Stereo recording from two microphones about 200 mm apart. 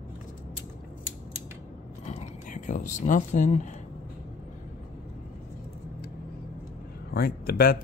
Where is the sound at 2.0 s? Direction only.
35° left (ahead or behind).